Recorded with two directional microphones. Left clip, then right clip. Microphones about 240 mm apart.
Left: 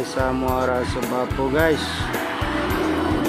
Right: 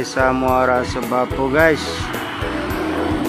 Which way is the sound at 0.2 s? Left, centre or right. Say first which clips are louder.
Right 7 dB; centre.